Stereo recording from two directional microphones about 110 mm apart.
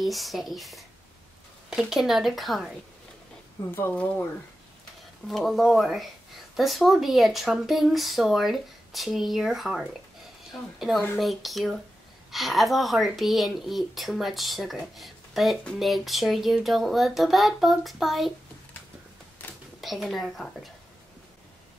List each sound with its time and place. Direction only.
0.0 s speech: centre (ahead or behind)
3.7 s speech: 15° left (ahead or behind)
5.3 s speech: centre (ahead or behind)
19.4 s a sound: 15° left (ahead or behind)
19.8 s speech: centre (ahead or behind)